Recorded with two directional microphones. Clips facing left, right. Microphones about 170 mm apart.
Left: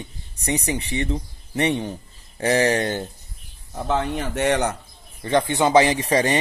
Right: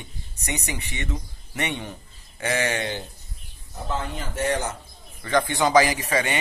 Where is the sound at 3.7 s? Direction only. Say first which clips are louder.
Left 7 dB; 70° left (ahead or behind).